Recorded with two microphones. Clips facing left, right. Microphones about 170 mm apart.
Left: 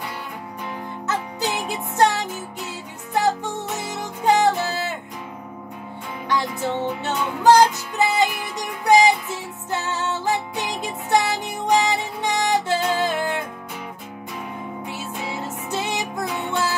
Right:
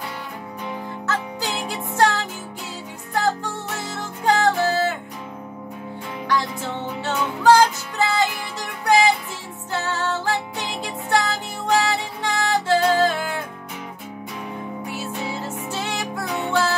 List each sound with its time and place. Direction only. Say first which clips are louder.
1.0 s music: left 2 dB; 20° left (ahead or behind)
7.0 s music: even; 20° left (ahead or behind)
15.4 s music: left 1 dB; 20° left (ahead or behind)